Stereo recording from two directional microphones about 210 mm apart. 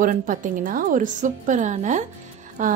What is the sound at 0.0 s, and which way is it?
Speech, 40° right (ahead or behind).